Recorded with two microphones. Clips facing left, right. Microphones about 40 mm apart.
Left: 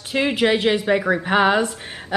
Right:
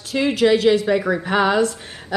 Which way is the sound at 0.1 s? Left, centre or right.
Left.